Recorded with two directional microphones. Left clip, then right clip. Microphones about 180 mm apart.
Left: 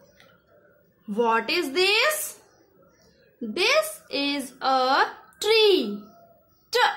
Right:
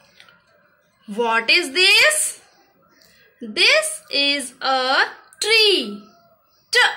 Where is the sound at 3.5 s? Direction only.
20° left (ahead or behind).